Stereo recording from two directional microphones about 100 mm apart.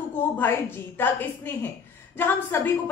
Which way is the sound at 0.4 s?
20° left (ahead or behind).